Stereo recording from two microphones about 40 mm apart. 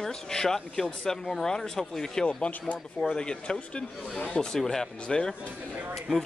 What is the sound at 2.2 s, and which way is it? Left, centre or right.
Speech, left.